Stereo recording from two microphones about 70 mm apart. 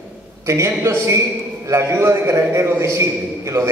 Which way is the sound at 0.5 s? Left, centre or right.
Right.